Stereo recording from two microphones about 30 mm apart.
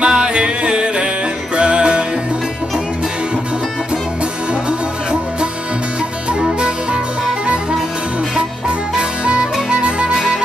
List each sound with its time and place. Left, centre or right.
0.0 s music: right
4.6 s music: right
8.4 s music: right